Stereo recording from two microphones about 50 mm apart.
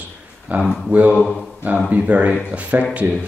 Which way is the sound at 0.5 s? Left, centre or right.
Right.